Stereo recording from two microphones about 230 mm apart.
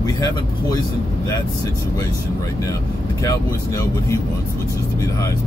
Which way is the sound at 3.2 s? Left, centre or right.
Centre.